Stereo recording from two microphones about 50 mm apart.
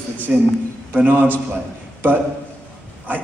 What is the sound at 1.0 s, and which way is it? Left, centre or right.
Speech, right.